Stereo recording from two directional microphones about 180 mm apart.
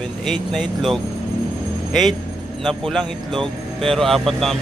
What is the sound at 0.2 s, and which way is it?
Speech, centre (ahead or behind).